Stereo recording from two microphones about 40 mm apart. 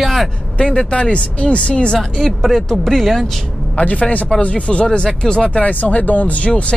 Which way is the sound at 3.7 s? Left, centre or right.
Left.